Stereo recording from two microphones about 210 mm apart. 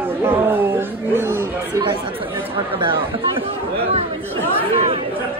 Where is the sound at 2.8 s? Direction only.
25° right (ahead or behind).